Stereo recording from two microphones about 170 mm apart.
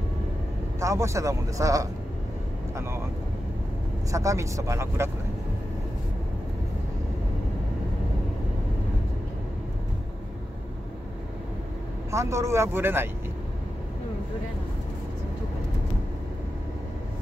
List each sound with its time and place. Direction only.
0.7 s speech: 15° right (ahead or behind)
4.1 s speech: 20° right (ahead or behind)
12.1 s speech: 15° right (ahead or behind)